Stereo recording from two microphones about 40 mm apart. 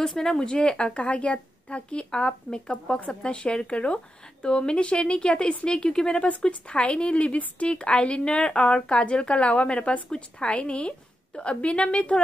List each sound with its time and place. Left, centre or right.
0.0 s a woman's voice: centre